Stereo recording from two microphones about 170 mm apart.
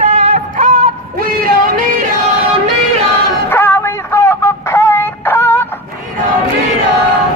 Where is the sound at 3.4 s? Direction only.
15° left (ahead or behind).